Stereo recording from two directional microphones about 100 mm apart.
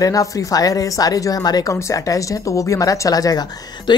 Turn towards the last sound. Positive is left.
turn(degrees=40)  # may be behind; listen again after turning